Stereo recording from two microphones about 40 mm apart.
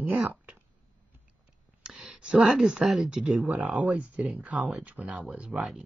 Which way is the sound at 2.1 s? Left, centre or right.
Right.